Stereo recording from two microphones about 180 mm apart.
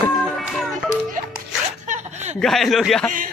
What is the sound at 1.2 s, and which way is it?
Zipper, 45° right (ahead or behind).